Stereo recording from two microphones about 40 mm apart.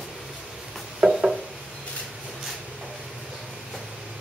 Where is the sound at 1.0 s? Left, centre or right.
Right.